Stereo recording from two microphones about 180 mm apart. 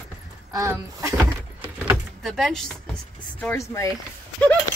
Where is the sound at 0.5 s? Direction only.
20° right (ahead or behind).